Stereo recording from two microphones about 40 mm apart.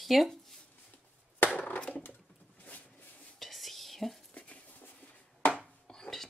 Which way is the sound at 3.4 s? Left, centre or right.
Centre.